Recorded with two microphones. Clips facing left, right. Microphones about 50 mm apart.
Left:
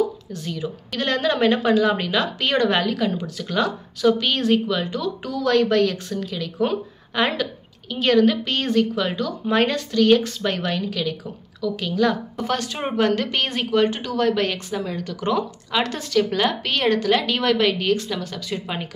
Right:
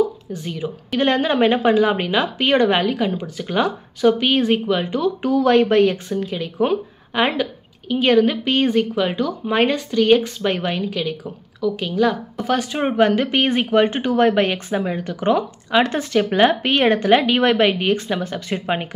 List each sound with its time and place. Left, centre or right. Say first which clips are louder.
0.3 s a woman's voice: right 2 dB; centre